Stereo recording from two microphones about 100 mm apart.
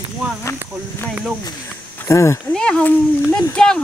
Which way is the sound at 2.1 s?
30° left (ahead or behind).